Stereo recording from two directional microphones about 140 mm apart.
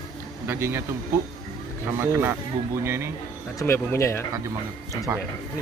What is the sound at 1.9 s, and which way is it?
Speech, 15° right (ahead or behind).